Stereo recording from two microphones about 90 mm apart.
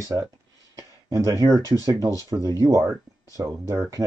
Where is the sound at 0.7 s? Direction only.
35° right (ahead or behind).